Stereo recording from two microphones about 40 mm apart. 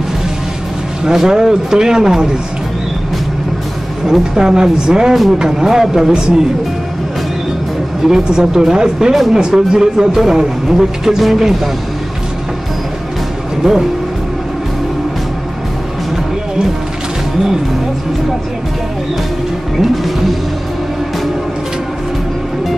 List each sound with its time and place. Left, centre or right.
1.0 s speech: centre
4.1 s speech: centre
6.1 s speech: right
8.1 s speech: centre
9.1 s speech: centre
9.4 s speech: centre
13.6 s speech: centre